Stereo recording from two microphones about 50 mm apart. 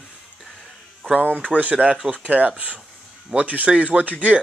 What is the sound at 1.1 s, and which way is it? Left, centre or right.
Speech, right.